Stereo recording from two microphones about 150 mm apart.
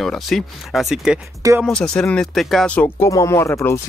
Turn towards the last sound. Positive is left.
turn(degrees=15)  # may be behind; listen again after turning